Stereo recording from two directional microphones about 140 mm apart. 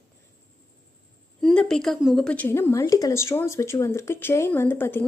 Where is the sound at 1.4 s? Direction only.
5° left (ahead or behind).